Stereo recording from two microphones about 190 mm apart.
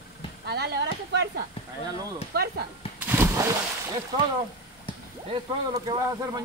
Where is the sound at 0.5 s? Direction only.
60° right (ahead or behind).